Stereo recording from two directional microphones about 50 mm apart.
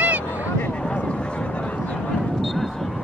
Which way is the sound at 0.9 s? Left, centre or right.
Left.